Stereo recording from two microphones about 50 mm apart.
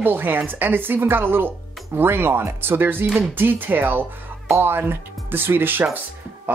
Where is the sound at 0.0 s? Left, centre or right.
Right.